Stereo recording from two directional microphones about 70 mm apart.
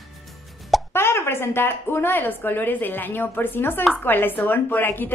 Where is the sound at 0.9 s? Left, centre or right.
Left.